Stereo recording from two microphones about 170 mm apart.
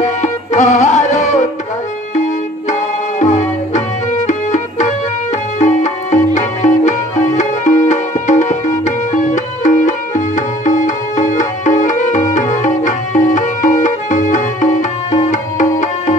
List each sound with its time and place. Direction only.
0.0 s music: 45° left (ahead or behind)
3.2 s music: 45° left (ahead or behind)